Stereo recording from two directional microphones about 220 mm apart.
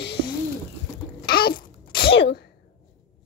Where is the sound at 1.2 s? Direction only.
45° left (ahead or behind).